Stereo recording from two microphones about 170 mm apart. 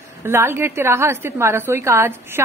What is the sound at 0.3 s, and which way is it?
A woman's voice, 15° right (ahead or behind).